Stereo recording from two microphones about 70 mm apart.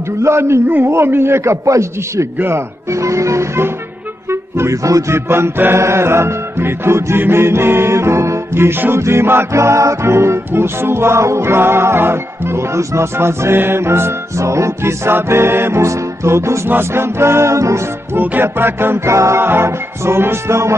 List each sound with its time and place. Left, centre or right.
0.2 s music: right
2.3 s speech: right
4.3 s music: right
18.1 s music: right